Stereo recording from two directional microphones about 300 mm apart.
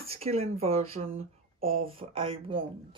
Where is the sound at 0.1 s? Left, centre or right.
Centre.